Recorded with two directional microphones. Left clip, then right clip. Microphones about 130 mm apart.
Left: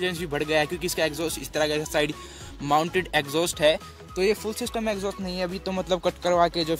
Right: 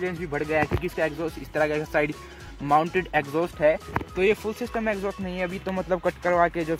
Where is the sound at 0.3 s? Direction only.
20° left (ahead or behind).